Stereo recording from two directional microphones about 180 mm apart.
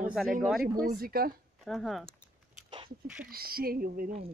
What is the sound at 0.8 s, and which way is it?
Speech, 55° right (ahead or behind).